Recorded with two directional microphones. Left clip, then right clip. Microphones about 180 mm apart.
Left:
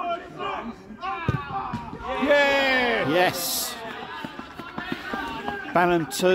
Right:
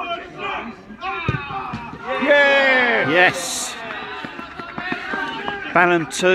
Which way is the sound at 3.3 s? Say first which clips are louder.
Right 4 dB; 45° left (ahead or behind).